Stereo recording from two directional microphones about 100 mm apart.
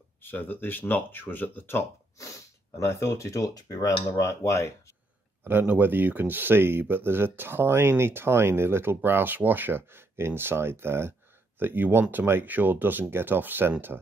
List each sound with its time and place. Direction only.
0.2 s speech: 20° left (ahead or behind)
2.9 s speech: 30° left (ahead or behind)
5.4 s speech: 20° right (ahead or behind)